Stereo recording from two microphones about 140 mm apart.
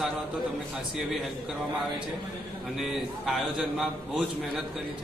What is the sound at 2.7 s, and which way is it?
A man's voice, centre (ahead or behind).